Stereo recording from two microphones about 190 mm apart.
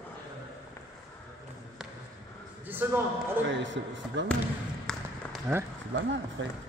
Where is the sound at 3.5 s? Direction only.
75° right (ahead or behind).